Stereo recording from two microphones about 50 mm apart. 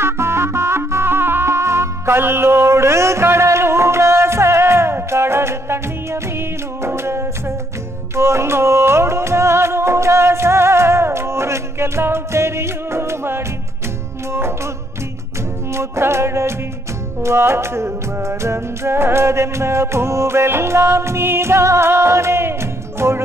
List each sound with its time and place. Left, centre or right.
0.0 s music: right
15.7 s music: right